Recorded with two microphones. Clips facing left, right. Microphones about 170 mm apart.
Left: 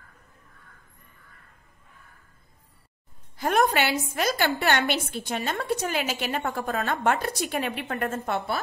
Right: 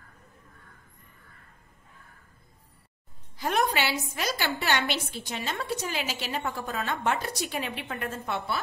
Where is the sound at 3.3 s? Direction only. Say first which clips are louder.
Left 4 dB; 50° left (ahead or behind).